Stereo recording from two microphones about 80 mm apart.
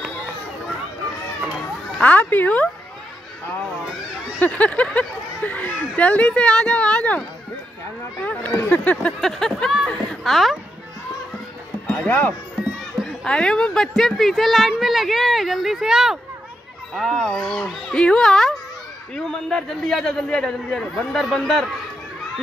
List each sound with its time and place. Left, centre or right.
2.0 s speech: centre
4.4 s speech: centre
9.2 s a woman's voice: centre
12.1 s speech: left
13.0 s a woman's voice: centre